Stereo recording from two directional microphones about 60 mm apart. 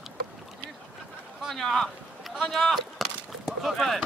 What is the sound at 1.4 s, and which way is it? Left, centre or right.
Speech, centre.